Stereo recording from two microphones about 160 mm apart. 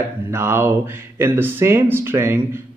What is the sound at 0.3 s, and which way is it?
Speech, 15° right (ahead or behind).